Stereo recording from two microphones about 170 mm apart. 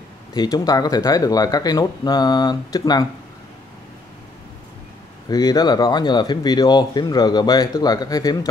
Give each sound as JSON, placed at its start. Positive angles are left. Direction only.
{"t": 0.3, "sound": "speech", "side_deg": 25}
{"t": 5.3, "sound": "speech", "side_deg": 25}